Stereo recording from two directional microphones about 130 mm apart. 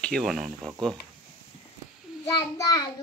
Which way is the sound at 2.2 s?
25° left (ahead or behind).